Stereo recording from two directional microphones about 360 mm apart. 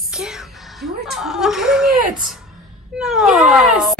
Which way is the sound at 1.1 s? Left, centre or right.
Centre.